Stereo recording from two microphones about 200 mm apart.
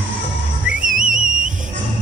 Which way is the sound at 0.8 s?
40° right (ahead or behind).